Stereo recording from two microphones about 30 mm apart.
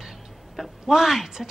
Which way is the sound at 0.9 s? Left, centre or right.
Centre.